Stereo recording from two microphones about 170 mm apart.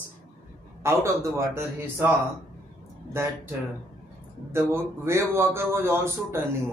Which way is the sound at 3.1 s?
15° right (ahead or behind).